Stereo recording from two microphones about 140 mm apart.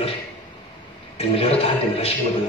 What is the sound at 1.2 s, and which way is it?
Speech, 45° left (ahead or behind).